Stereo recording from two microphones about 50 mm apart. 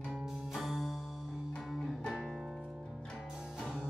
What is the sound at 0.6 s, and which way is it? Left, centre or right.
Music, centre.